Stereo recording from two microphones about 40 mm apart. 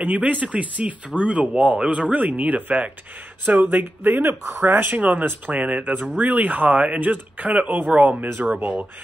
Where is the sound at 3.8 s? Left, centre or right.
Right.